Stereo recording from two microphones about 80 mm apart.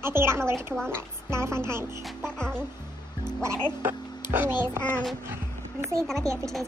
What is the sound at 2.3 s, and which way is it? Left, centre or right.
Speech, centre.